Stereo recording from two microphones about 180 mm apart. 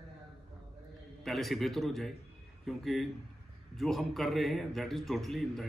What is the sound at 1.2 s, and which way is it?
A man's voice, centre (ahead or behind).